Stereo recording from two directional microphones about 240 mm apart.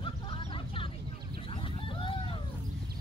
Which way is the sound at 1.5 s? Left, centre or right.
Left.